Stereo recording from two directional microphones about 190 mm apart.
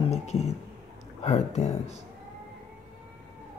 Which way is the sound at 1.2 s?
35° left (ahead or behind).